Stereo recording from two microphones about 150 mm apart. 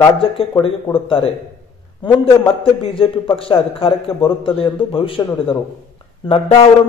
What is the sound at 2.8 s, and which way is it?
A man's voice, 35° left (ahead or behind).